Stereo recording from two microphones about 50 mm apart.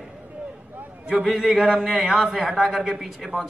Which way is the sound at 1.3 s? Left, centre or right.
Centre.